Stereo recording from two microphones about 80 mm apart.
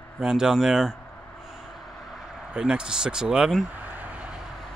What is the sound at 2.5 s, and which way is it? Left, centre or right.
Speech, centre.